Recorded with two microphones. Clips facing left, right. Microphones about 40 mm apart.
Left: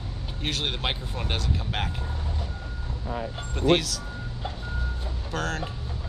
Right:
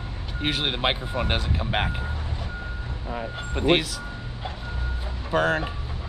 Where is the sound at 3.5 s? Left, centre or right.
Right.